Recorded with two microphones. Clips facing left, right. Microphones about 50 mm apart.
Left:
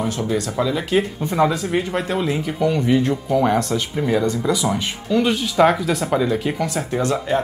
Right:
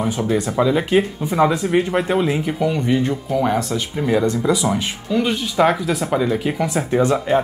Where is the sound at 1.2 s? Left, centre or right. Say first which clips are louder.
Right 2 dB; centre.